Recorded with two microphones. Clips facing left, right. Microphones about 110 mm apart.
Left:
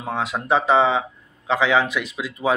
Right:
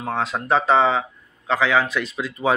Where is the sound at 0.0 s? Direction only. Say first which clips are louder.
Right 1 dB; 10° left (ahead or behind).